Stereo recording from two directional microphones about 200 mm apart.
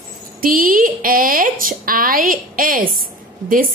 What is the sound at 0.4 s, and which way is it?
A woman's voice, 45° right (ahead or behind).